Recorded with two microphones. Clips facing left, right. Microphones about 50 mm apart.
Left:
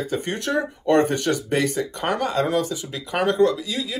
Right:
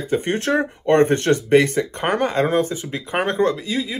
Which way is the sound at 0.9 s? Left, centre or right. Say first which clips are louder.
Right 3 dB; right.